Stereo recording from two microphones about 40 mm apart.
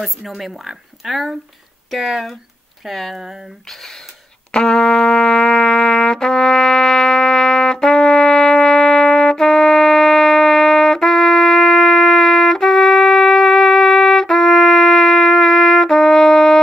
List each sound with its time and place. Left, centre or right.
0.4 s speech: centre
4.5 s brass instrument: left
4.7 s trumpet: centre